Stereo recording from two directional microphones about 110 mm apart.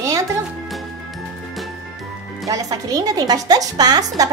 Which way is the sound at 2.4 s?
35° right (ahead or behind).